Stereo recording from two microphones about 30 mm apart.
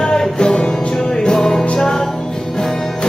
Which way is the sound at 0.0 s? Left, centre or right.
Left.